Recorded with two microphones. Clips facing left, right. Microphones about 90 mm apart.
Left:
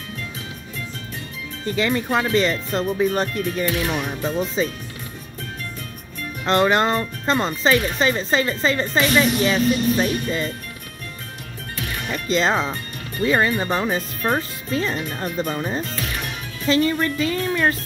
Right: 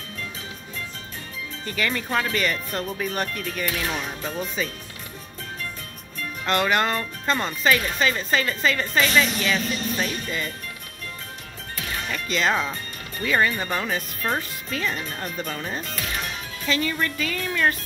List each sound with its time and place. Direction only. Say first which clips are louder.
1.7 s speech: left 5 dB; 25° left (ahead or behind)
6.4 s speech: left 4 dB; 25° left (ahead or behind)
12.1 s speech: left 4 dB; 30° left (ahead or behind)